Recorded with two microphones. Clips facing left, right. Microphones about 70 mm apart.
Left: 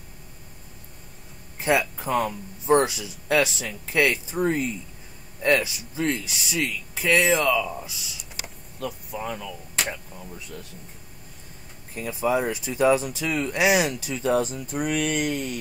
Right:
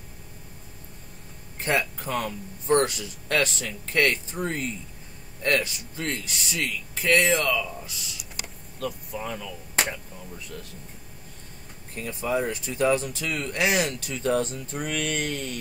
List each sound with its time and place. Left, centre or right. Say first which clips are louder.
1.6 s speech: left 3 dB; centre
7.6 s speech: left 4 dB; left
8.7 s speech: even; centre
11.9 s speech: left 3 dB; centre